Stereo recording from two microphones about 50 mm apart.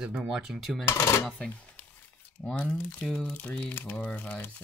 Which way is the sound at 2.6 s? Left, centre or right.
Left.